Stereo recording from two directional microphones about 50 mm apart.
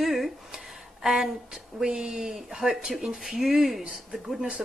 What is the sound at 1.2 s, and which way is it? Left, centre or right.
Speech, centre.